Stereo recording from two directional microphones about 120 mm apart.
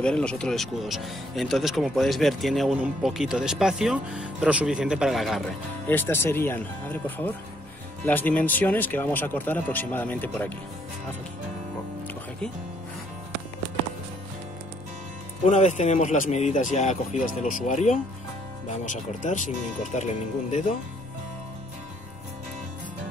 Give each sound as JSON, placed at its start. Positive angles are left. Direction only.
{"t": 0.0, "sound": "speech", "side_deg": 10}
{"t": 5.9, "sound": "speech", "side_deg": 15}
{"t": 15.4, "sound": "speech", "side_deg": 75}